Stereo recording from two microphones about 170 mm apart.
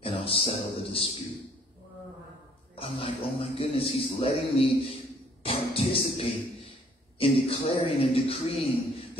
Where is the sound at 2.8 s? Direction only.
35° left (ahead or behind).